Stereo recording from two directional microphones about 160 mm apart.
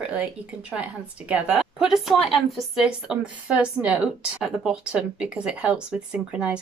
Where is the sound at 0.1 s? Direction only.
10° right (ahead or behind).